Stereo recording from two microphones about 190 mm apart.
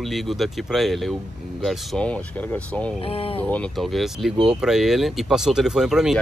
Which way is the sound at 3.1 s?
30° left (ahead or behind).